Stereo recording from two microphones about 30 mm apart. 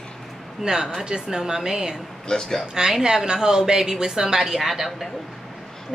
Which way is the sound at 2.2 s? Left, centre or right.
Left.